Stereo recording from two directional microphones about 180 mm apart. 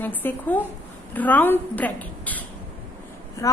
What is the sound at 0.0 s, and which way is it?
A woman's voice, 10° left (ahead or behind).